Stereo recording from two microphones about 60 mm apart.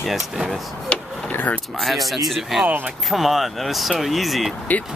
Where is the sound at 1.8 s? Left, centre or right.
Centre.